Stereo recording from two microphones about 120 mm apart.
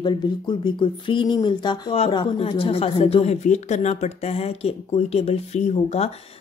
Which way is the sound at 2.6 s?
55° left (ahead or behind).